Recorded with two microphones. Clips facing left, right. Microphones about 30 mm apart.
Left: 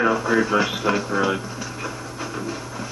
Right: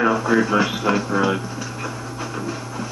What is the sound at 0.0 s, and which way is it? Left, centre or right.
Speech, centre.